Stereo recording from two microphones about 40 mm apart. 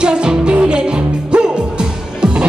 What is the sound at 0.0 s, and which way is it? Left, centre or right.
Music, right.